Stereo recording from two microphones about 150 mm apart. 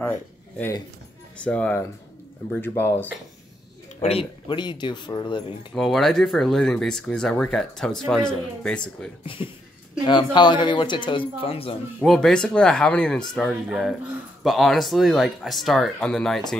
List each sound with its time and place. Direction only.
0.0 s a sound: 10° left (ahead or behind)
1.4 s speech: 10° left (ahead or behind)
4.0 s speech: 40° left (ahead or behind)
5.8 s speech: centre (ahead or behind)
9.2 s speech: 35° left (ahead or behind)
12.0 s speech: 5° left (ahead or behind)